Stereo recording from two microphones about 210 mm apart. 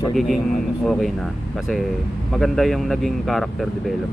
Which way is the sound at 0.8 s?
Centre (ahead or behind).